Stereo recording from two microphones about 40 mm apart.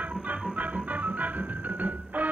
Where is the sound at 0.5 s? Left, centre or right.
Right.